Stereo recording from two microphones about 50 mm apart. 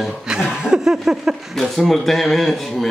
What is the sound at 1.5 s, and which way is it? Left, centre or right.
A man's voice, centre.